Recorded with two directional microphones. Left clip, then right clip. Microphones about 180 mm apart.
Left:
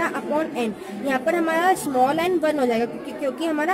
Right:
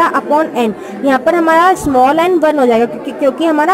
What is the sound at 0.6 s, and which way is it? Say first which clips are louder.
A woman's voice: right 11 dB; 15° right (ahead or behind).